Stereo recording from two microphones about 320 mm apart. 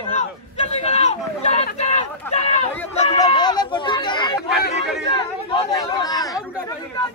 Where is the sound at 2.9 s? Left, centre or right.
Centre.